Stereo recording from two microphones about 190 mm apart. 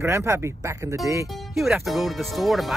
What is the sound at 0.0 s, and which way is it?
Speech, 15° right (ahead or behind).